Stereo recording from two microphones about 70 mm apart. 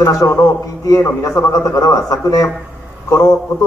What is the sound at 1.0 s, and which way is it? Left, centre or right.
Speech, left.